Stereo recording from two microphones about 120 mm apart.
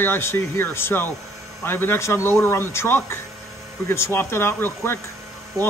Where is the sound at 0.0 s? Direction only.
20° left (ahead or behind).